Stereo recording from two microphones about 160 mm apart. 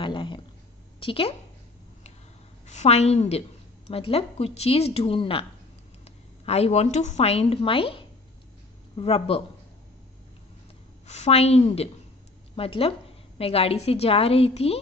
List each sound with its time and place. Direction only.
0.0 s a woman's voice: 30° left (ahead or behind)
2.6 s a woman's voice: 45° left (ahead or behind)
11.1 s a woman's voice: 45° left (ahead or behind)